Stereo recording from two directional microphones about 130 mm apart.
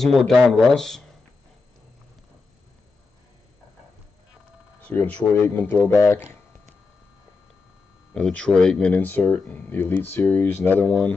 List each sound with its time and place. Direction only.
0.0 s speech: centre (ahead or behind)
4.8 s speech: 10° left (ahead or behind)
8.1 s speech: 10° left (ahead or behind)